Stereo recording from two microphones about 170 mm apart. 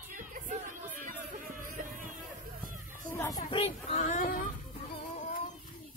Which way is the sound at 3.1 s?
20° left (ahead or behind).